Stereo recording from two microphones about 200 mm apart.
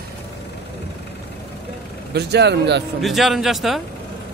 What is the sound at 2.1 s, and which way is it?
Speech, 55° right (ahead or behind).